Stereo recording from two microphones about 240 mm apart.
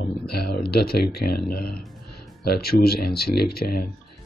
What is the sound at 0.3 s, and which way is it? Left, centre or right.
A man's voice, left.